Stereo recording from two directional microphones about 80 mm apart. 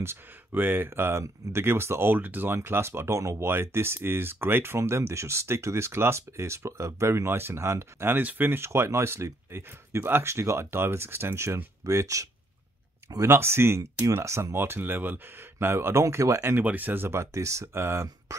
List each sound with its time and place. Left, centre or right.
0.0 s speech: right
13.3 s speech: right
16.6 s speech: right